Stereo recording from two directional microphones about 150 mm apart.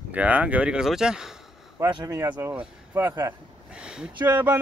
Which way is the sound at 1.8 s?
20° right (ahead or behind).